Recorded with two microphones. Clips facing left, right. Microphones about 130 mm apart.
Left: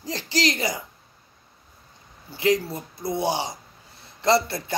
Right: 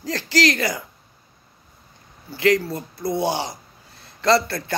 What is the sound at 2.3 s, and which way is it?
A man's voice, 20° left (ahead or behind).